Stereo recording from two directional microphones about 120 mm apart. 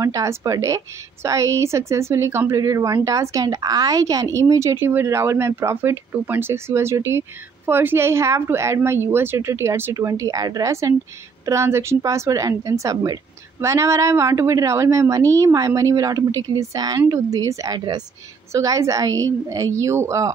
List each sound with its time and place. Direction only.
0.0 s a woman's voice: 30° right (ahead or behind)